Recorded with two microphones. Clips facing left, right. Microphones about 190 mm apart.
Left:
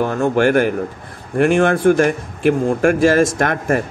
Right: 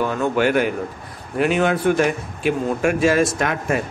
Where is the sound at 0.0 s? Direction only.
45° left (ahead or behind).